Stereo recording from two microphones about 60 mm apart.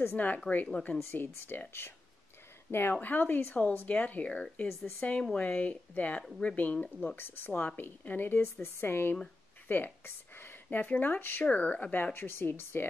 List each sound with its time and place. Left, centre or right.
0.0 s speech: left
0.9 s a woman's voice: left